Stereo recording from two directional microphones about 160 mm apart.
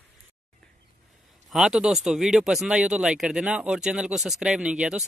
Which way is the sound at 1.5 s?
5° right (ahead or behind).